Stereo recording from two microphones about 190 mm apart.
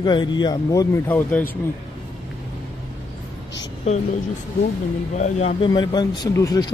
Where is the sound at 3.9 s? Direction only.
30° left (ahead or behind).